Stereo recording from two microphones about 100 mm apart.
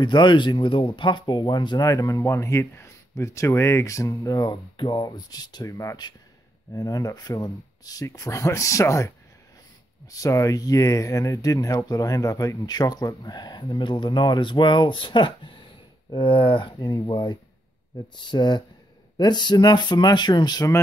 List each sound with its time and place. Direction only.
0.0 s speech: 50° left (ahead or behind)
1.9 s speech: 35° left (ahead or behind)
4.7 s speech: 50° left (ahead or behind); by 9.1 s 30° left (ahead or behind)
10.1 s speech: 35° left (ahead or behind)